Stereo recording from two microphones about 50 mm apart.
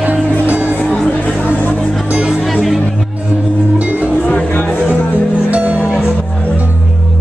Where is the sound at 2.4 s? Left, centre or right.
Centre.